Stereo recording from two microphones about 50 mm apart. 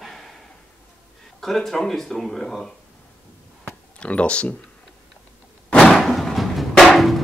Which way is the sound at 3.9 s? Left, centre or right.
Left.